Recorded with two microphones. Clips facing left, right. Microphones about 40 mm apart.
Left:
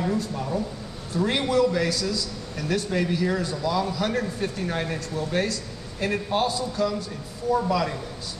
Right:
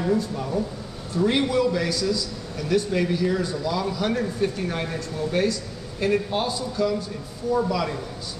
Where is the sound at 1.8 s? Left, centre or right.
Centre.